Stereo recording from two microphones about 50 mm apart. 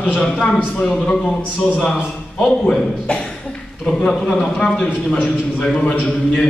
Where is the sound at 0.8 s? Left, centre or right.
Centre.